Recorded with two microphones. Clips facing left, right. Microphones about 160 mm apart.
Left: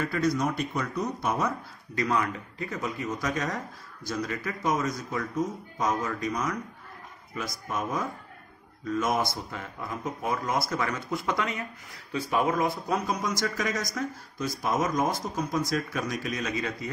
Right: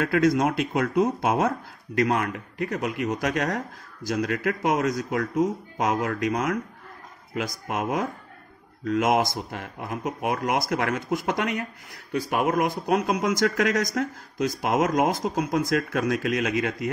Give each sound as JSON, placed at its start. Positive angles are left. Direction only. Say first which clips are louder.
{"t": 0.0, "sound": "speech", "louder": "right 6 dB", "side_deg": -90}
{"t": 2.0, "sound": "speech", "louder": "right 4 dB", "side_deg": -70}
{"t": 5.8, "sound": "speech", "louder": "right 3 dB", "side_deg": -90}
{"t": 8.8, "sound": "speech", "louder": "right 5 dB", "side_deg": -85}